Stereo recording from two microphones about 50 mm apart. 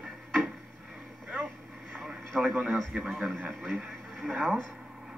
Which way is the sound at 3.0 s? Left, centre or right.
Centre.